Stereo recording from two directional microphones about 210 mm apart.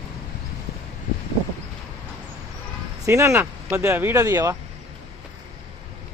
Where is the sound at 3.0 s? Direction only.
15° right (ahead or behind).